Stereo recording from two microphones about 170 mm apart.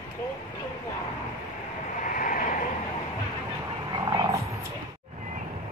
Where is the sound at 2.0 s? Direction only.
50° left (ahead or behind).